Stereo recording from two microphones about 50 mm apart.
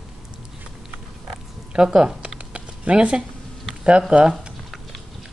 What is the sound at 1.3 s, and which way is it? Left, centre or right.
Oink, centre.